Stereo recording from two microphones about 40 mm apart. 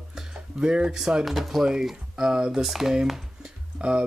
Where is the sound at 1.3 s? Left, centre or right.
Centre.